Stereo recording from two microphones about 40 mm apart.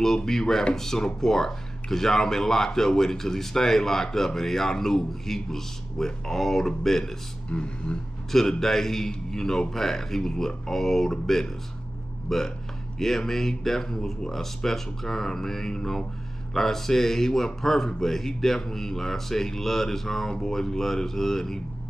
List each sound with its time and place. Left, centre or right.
0.0 s speech: centre
7.4 s speech: left
8.3 s speech: centre